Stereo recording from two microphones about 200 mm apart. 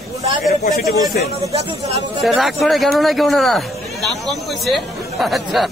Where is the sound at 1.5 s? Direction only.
30° right (ahead or behind).